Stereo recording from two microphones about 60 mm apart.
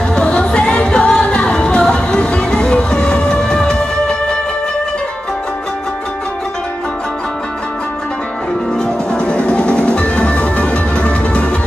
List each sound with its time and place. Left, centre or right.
0.1 s music: centre
8.7 s music: centre